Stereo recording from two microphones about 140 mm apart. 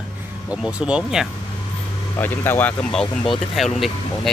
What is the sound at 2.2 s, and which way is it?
Speech, 15° left (ahead or behind).